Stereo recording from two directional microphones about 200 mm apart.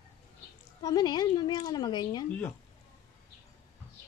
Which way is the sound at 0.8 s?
20° left (ahead or behind).